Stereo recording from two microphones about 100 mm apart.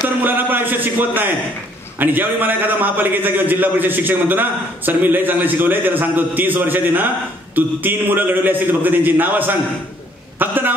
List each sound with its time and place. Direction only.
0.2 s a man's voice: 20° right (ahead or behind)